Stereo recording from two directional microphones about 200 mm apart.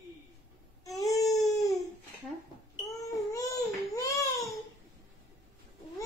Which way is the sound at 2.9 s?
15° left (ahead or behind).